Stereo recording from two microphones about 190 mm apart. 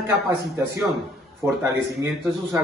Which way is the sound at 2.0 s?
15° right (ahead or behind).